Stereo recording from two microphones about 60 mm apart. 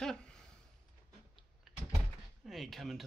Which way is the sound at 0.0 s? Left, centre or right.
Centre.